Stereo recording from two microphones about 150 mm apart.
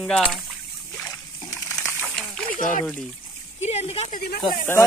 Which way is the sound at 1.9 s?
10° left (ahead or behind).